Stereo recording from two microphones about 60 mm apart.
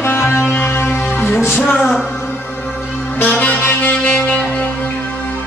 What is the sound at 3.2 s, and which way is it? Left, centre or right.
Music, left.